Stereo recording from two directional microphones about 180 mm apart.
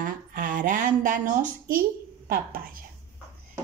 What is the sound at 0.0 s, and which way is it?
Speech, 50° right (ahead or behind).